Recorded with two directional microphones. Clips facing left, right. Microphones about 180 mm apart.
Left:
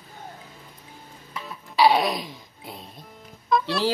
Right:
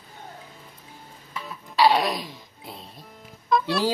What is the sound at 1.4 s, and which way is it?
Music, centre (ahead or behind).